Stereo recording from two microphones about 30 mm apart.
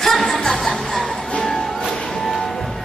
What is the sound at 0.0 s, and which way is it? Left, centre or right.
Music, centre.